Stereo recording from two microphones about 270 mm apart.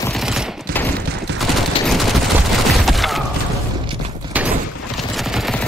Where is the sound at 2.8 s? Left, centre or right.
Centre.